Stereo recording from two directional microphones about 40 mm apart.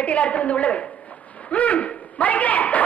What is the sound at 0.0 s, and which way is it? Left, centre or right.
Speech, left.